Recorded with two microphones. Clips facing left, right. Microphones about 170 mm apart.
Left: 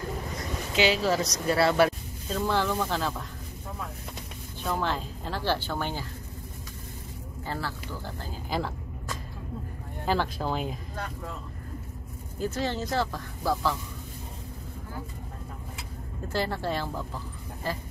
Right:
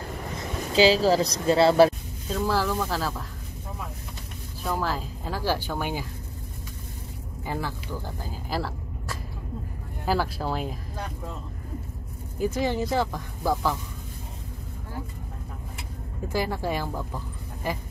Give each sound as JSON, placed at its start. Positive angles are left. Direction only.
{"t": 0.7, "sound": "a woman's voice", "side_deg": -35}
{"t": 2.2, "sound": "speech", "side_deg": -5}
{"t": 4.6, "sound": "speech", "side_deg": -5}
{"t": 7.4, "sound": "speech", "side_deg": -15}
{"t": 8.3, "sound": "a sound", "side_deg": -5}
{"t": 10.0, "sound": "speech", "side_deg": -5}
{"t": 12.4, "sound": "speech", "side_deg": -15}
{"t": 16.3, "sound": "speech", "side_deg": -10}